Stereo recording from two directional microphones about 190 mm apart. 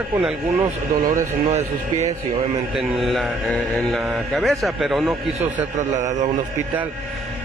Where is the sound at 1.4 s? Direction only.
35° right (ahead or behind).